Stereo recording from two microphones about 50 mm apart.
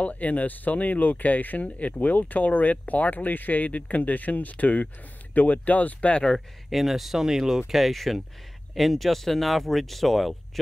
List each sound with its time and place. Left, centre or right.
0.0 s speech: left
6.3 s speech: centre